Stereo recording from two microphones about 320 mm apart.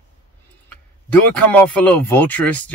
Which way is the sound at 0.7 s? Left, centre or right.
Centre.